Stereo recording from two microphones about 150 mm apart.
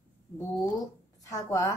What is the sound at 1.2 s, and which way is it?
Speech, 20° left (ahead or behind).